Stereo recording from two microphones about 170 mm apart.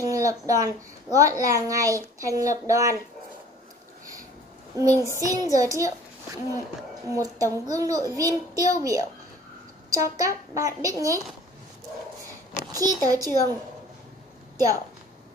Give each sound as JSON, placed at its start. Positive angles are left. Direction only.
{"t": 0.0, "sound": "a woman's voice", "side_deg": -20}
{"t": 4.7, "sound": "a child's voice", "side_deg": -20}
{"t": 12.7, "sound": "a child's voice", "side_deg": -20}